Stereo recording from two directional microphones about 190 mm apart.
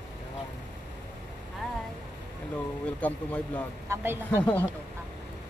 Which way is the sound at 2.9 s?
10° left (ahead or behind).